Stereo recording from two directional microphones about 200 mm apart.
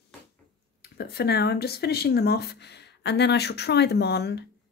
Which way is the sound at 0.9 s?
55° left (ahead or behind).